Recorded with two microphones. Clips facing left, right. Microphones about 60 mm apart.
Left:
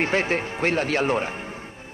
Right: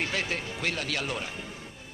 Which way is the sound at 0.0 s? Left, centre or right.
Left.